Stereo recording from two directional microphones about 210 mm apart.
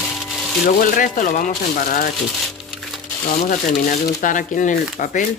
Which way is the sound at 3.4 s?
40° left (ahead or behind).